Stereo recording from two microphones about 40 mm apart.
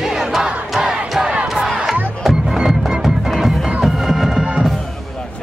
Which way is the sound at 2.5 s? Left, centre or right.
Centre.